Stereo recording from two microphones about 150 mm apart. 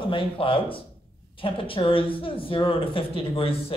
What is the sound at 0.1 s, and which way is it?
A man's voice, 35° left (ahead or behind).